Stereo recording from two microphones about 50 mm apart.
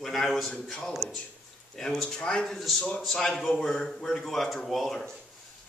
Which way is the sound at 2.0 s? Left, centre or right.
Centre.